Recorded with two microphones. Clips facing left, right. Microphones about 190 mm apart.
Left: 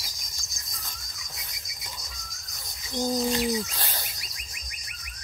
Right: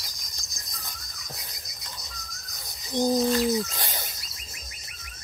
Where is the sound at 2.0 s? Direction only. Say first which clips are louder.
Right 2 dB; centre (ahead or behind).